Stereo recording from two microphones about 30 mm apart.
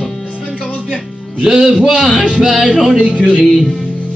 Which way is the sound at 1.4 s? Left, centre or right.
Centre.